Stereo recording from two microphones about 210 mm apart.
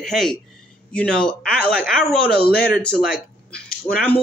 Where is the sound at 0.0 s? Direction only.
Centre (ahead or behind).